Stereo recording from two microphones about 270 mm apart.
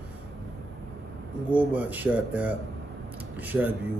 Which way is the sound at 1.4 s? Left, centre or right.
Centre.